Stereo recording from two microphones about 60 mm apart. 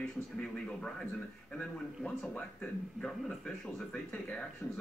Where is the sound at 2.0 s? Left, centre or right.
Centre.